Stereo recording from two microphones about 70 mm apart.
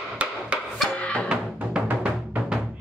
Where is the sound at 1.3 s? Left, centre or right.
Centre.